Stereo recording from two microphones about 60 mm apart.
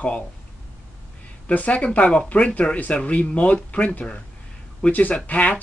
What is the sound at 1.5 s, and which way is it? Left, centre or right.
Speech, left.